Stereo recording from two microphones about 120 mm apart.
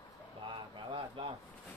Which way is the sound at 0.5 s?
45° right (ahead or behind).